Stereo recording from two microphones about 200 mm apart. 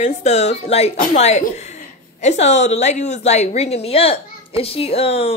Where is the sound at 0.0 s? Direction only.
35° left (ahead or behind).